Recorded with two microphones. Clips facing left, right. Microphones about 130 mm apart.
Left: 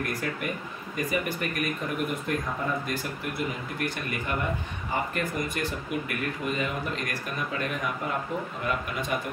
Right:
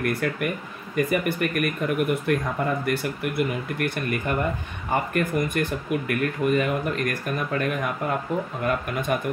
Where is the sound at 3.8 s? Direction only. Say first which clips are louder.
Right 4 dB; 55° right (ahead or behind).